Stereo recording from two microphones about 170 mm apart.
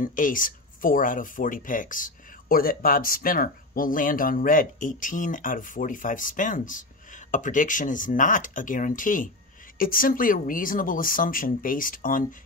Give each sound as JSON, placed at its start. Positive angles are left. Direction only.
{"t": 0.0, "sound": "speech", "side_deg": 50}